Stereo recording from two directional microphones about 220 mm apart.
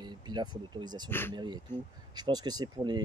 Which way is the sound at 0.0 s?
20° right (ahead or behind).